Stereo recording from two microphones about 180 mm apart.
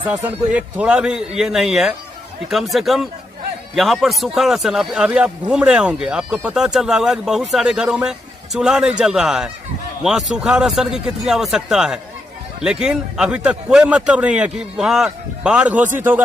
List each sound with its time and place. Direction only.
0.0 s speech: 10° right (ahead or behind)